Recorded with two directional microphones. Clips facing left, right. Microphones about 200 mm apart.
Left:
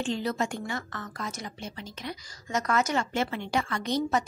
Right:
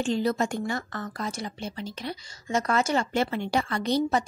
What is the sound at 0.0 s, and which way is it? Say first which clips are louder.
A woman's voice: right 4 dB; 40° right (ahead or behind).